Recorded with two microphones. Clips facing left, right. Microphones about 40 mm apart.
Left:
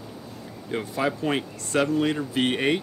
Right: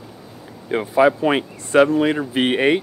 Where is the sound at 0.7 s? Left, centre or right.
Right.